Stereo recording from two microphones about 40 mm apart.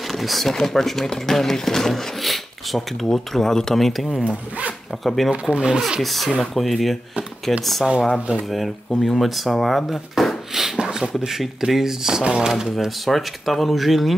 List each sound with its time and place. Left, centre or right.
0.1 s speech: centre
5.3 s speech: right
5.9 s speech: centre
10.8 s a sound: centre
11.1 s speech: centre
12.6 s speech: centre